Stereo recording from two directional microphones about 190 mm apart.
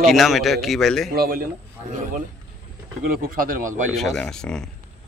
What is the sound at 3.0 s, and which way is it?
Speech, 50° right (ahead or behind).